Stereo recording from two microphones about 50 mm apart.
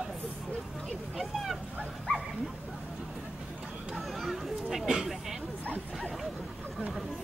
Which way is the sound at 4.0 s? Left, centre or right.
Centre.